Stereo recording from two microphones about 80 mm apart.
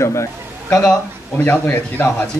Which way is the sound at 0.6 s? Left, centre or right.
Centre.